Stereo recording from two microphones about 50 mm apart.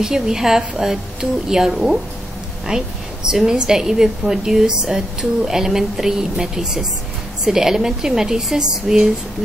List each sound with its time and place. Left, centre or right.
0.0 s a woman's voice: centre